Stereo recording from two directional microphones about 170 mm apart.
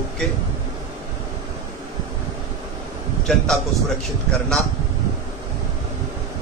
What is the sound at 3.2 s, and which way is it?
Speech, 5° left (ahead or behind).